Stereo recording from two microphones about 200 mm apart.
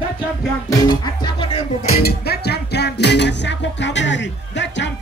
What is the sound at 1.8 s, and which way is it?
Music, 50° left (ahead or behind).